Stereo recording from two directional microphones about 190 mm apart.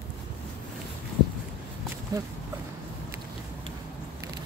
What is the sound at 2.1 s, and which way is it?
Speech, 20° right (ahead or behind).